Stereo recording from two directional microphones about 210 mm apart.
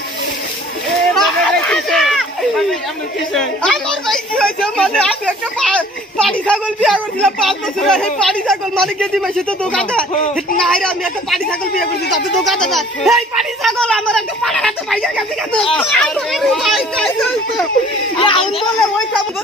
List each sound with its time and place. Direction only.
1.1 s a sound: centre (ahead or behind)
3.3 s a woman's voice: centre (ahead or behind)
10.6 s a woman's voice: 5° left (ahead or behind)
18.1 s speech: 20° left (ahead or behind)
18.6 s a woman's voice: centre (ahead or behind)